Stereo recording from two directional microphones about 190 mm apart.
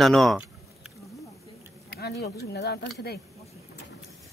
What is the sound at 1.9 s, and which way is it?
Speech, 60° left (ahead or behind).